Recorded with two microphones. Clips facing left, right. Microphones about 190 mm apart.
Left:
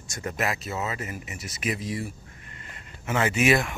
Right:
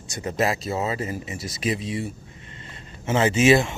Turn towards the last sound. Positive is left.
turn(degrees=-25)  # may be behind; listen again after turning